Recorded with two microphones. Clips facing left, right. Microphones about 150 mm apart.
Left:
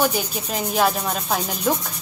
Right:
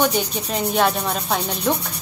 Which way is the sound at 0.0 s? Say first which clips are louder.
Right 2 dB; 5° left (ahead or behind).